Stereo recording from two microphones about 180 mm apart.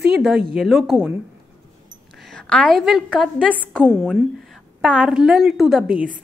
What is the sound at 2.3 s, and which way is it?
Speech, 5° left (ahead or behind).